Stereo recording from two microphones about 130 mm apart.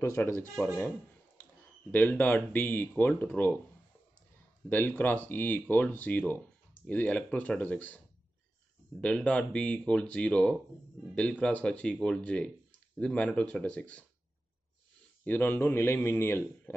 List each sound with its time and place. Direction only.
0.0 s speech: 20° left (ahead or behind)
4.6 s speech: 15° left (ahead or behind)
9.0 s speech: 10° left (ahead or behind)
15.2 s speech: 15° left (ahead or behind)